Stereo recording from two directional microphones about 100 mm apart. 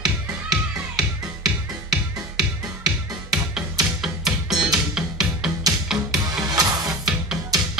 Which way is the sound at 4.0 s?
5° right (ahead or behind).